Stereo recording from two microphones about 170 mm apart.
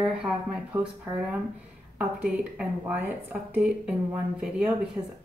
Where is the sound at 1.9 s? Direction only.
10° right (ahead or behind).